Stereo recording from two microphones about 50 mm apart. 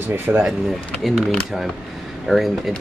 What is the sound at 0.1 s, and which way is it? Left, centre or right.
Speech, right.